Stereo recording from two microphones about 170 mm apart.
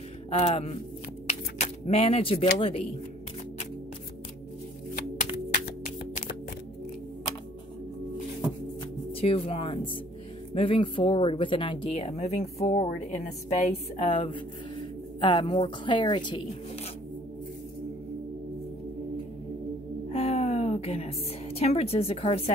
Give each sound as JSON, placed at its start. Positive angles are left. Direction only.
{"t": 0.3, "sound": "speech", "side_deg": 35}
{"t": 9.1, "sound": "a woman's voice", "side_deg": 35}
{"t": 20.1, "sound": "a sound", "side_deg": 35}